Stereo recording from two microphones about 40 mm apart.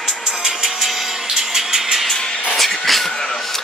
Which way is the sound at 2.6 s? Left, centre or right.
Centre.